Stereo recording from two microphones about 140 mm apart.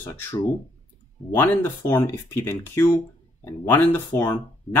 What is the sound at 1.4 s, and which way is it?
Speech, 15° left (ahead or behind).